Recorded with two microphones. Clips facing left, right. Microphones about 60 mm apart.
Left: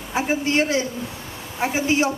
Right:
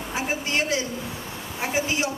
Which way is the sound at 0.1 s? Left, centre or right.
Left.